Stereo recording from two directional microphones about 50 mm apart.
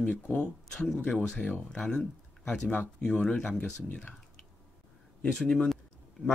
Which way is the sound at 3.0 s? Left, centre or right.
Centre.